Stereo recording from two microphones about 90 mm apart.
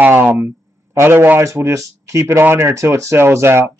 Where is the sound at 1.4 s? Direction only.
35° right (ahead or behind).